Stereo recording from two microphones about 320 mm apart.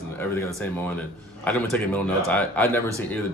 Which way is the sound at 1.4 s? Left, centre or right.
Centre.